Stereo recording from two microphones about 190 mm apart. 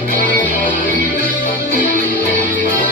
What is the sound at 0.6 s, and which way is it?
Music, 45° right (ahead or behind).